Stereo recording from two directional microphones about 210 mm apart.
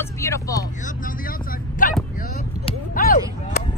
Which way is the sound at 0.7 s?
40° left (ahead or behind).